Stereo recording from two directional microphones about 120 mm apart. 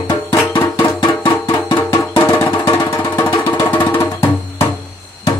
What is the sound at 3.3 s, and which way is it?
Music, 30° left (ahead or behind).